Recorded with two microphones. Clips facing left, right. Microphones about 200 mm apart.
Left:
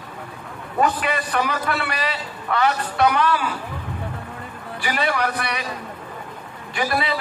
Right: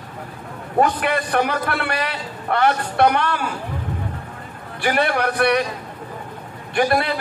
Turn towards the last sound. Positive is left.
turn(degrees=-55)  # may be behind; listen again after turning